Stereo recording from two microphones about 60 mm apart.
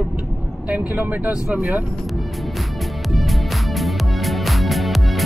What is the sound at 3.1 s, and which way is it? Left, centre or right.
Music, centre.